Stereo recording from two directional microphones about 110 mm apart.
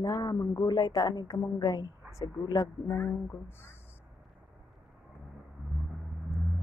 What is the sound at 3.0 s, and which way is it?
Speech, 20° left (ahead or behind).